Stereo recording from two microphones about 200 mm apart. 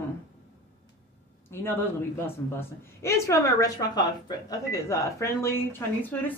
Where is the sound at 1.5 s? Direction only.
10° left (ahead or behind).